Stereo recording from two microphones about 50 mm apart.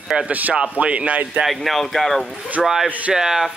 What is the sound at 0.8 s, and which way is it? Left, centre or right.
Speech, right.